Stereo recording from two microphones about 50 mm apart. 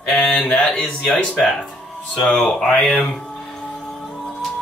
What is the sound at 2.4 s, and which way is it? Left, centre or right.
Speech, centre.